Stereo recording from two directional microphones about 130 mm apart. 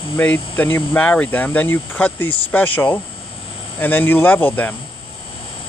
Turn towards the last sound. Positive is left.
turn(degrees=15)  # may be behind; listen again after turning